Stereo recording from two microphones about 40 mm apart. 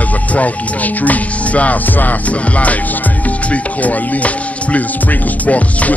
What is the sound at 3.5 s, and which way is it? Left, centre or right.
Speech, left.